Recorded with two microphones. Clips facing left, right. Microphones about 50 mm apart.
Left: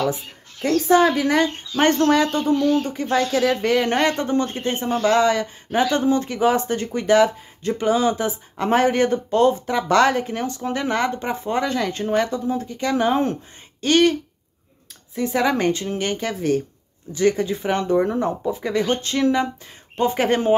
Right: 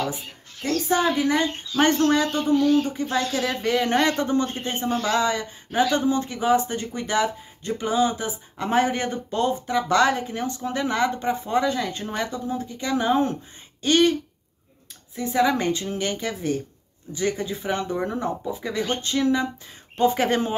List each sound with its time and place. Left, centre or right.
0.6 s a woman's voice: left
1.8 s speech: left
2.6 s speech: centre
2.9 s speech: left
11.7 s speech: left
15.1 s speech: left
20.0 s speech: left